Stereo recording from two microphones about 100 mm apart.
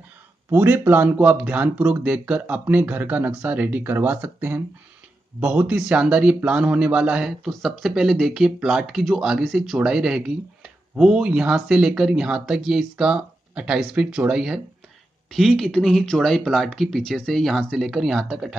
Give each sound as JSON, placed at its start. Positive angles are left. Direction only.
{"t": 0.5, "sound": "speech", "side_deg": -25}